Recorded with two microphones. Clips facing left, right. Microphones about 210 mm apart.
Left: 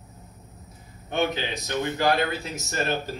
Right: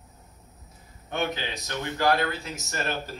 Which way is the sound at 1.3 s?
20° left (ahead or behind).